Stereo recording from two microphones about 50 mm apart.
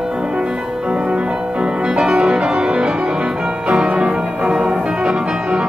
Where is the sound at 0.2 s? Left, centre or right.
Centre.